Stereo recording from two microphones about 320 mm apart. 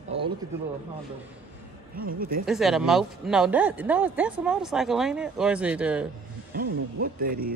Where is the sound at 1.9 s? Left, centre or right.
Right.